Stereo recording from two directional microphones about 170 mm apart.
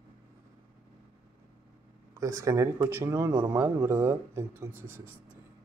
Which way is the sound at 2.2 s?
20° right (ahead or behind).